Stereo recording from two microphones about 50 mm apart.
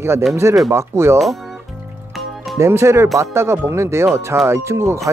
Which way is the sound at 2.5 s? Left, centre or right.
Right.